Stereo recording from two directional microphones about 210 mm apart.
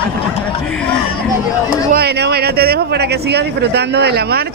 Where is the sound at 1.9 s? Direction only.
50° right (ahead or behind).